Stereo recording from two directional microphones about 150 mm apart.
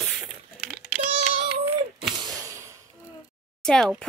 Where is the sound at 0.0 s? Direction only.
5° right (ahead or behind).